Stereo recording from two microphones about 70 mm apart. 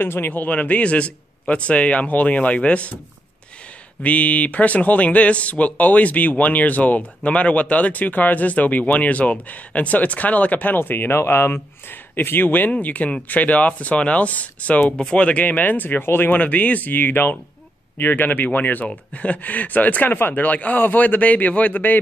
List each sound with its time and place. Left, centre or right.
0.0 s a man's voice: left
4.0 s a man's voice: left